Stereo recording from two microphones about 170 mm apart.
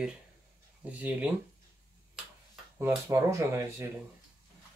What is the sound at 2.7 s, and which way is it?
Speech, 15° right (ahead or behind).